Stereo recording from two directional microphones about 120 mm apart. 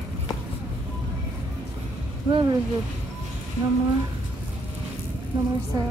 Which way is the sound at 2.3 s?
40° right (ahead or behind).